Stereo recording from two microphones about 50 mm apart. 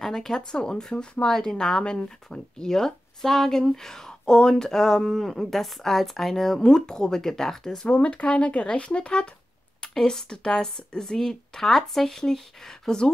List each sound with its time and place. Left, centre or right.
0.0 s speech: centre
7.9 s speech: left